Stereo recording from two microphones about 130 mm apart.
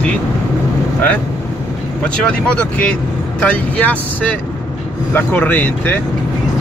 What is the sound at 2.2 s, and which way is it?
Speech, 10° left (ahead or behind).